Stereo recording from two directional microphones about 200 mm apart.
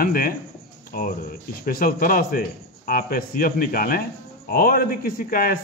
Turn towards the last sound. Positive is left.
turn(degrees=45)  # may be behind; listen again after turning